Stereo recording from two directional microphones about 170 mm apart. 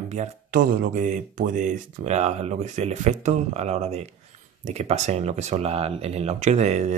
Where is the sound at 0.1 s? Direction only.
50° right (ahead or behind).